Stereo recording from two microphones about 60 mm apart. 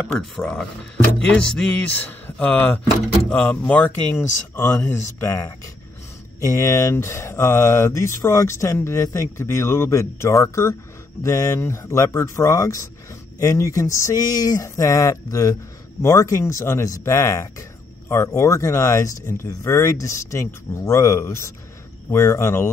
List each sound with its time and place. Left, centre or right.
1.2 s music: centre
1.8 s speech: left
4.2 s speech: left
4.9 s speech: left
6.4 s speech: left
6.9 s speech: left
19.4 s speech: left